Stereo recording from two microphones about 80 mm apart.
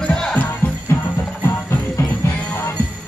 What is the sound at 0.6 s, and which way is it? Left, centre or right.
Music, left.